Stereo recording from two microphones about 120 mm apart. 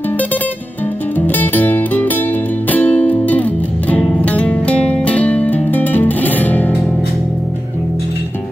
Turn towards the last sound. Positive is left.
turn(degrees=15)  # may be behind; listen again after turning